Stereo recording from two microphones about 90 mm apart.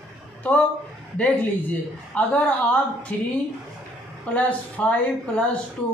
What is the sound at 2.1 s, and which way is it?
A man's voice, 15° left (ahead or behind).